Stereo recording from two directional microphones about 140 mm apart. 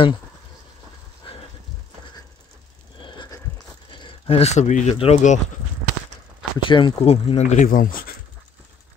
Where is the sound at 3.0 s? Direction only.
35° left (ahead or behind).